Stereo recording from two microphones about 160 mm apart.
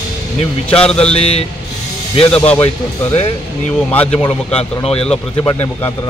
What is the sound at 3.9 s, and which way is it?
Speech, 10° left (ahead or behind).